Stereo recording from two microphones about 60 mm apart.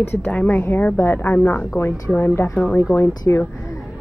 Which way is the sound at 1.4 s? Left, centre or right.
Centre.